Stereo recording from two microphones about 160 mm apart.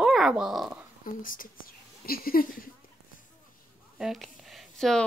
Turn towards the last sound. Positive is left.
turn(degrees=5)  # may be behind; listen again after turning